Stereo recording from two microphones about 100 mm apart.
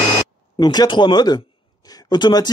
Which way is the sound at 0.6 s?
45° left (ahead or behind).